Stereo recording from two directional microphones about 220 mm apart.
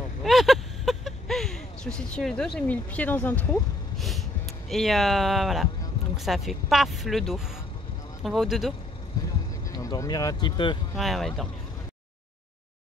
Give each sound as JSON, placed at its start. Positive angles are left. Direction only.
{"t": 0.2, "sound": "a sound", "side_deg": 0}
{"t": 6.1, "sound": "speech", "side_deg": 0}
{"t": 9.7, "sound": "speech", "side_deg": 15}
{"t": 11.0, "sound": "speech", "side_deg": 0}